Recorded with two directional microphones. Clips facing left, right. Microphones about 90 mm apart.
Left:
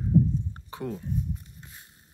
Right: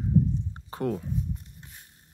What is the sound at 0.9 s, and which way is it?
Speech, 80° right.